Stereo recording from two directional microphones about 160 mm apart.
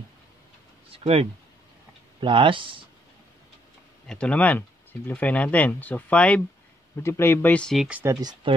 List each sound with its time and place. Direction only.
0.9 s speech: 40° right (ahead or behind)
4.1 s speech: 5° left (ahead or behind)
8.0 s speech: 20° right (ahead or behind)